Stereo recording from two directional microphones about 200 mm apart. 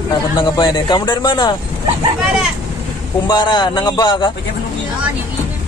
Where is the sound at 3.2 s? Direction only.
20° left (ahead or behind).